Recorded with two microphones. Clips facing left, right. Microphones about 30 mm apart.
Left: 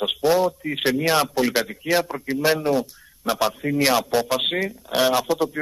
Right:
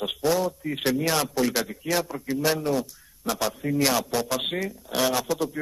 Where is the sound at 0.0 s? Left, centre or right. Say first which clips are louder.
Left 5 dB; left.